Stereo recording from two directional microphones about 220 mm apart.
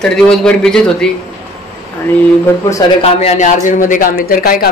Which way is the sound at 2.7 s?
20° left (ahead or behind).